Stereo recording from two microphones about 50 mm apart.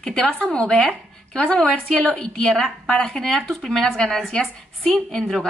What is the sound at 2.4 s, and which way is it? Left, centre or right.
A woman's voice, centre.